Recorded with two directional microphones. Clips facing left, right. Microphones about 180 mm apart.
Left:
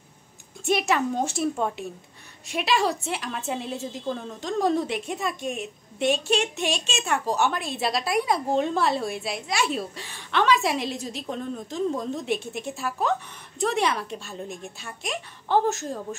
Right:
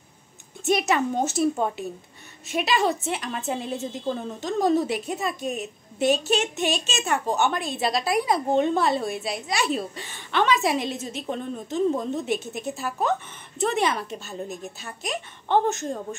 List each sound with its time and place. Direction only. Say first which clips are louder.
0.7 s a woman's voice: right 1 dB; centre (ahead or behind)